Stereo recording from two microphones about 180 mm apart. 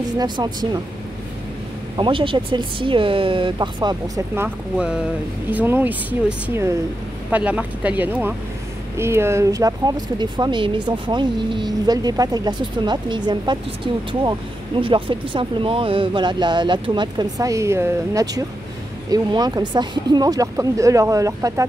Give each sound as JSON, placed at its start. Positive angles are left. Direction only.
{"t": 0.2, "sound": "speech", "side_deg": -25}
{"t": 2.0, "sound": "speech", "side_deg": -30}
{"t": 4.4, "sound": "speech", "side_deg": -5}
{"t": 14.8, "sound": "speech", "side_deg": -25}